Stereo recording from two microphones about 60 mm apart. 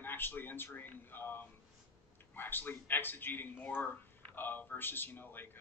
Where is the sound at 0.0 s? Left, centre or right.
Left.